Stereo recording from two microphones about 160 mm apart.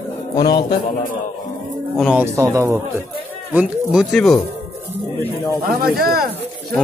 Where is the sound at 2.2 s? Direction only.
15° right (ahead or behind).